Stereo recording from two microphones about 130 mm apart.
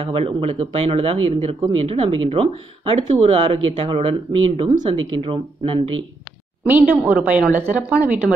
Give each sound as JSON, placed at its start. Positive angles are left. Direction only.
{"t": 0.0, "sound": "speech", "side_deg": -45}
{"t": 6.6, "sound": "a woman's voice", "side_deg": -15}